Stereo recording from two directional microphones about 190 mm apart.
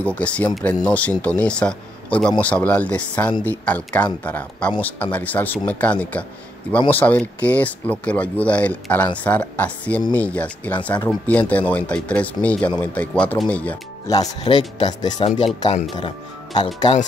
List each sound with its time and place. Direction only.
0.0 s speech: 5° left (ahead or behind)
14.2 s speech: 30° left (ahead or behind)